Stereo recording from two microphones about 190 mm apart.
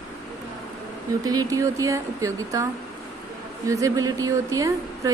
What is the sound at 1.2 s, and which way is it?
A woman's voice, 20° right (ahead or behind).